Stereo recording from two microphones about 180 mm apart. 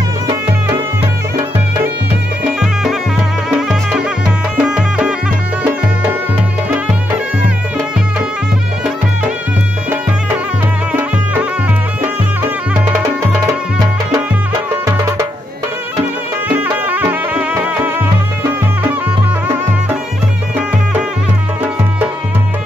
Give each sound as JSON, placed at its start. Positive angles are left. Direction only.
{"t": 2.6, "sound": "music", "side_deg": 0}
{"t": 10.9, "sound": "music", "side_deg": -10}
{"t": 14.9, "sound": "music", "side_deg": -15}
{"t": 16.7, "sound": "music", "side_deg": -10}